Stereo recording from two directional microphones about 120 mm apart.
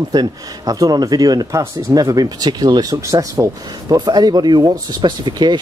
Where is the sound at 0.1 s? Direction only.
30° right (ahead or behind).